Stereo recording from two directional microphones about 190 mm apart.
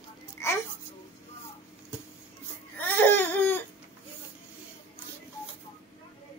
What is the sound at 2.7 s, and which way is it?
Baby cry, 10° left (ahead or behind).